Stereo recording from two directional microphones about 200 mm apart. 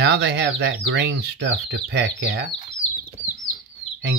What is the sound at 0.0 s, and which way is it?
Speech, 60° right (ahead or behind).